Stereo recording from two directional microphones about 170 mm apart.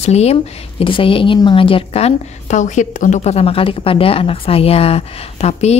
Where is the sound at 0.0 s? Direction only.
40° left (ahead or behind).